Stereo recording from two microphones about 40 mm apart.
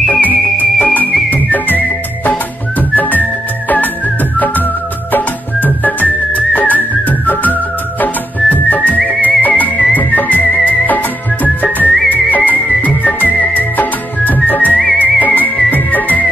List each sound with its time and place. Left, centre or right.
0.1 s music: left
2.9 s music: left
5.1 s music: left